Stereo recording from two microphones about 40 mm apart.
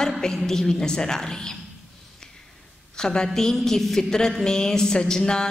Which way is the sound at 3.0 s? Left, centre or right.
Centre.